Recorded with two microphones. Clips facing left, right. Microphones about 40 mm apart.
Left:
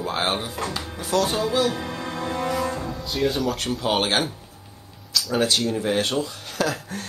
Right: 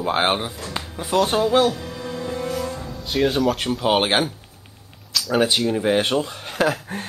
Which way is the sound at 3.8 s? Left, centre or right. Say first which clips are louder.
Right 4 dB; centre.